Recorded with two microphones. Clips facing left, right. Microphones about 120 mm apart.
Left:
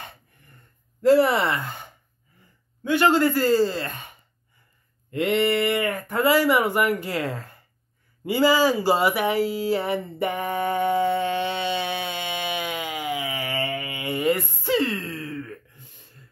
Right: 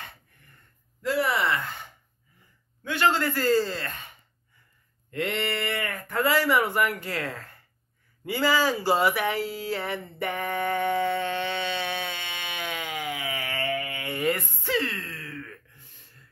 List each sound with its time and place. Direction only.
1.0 s speech: 30° left (ahead or behind)
2.8 s speech: 15° left (ahead or behind)
5.1 s speech: 15° left (ahead or behind)
8.2 s a sound: 10° left (ahead or behind)